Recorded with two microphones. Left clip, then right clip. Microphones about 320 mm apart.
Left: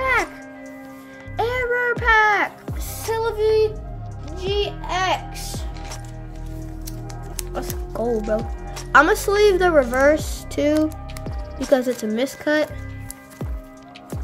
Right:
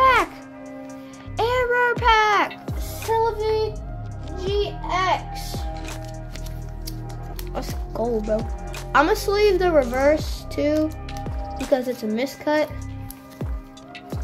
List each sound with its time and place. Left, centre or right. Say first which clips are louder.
0.0 s music: right 4 dB; centre
1.3 s music: right 1 dB; centre
3.2 s child singing: left 3 dB; left
4.6 s music: even; left
7.5 s music: left 1 dB; centre
8.2 s a woman's voice: left 1 dB; centre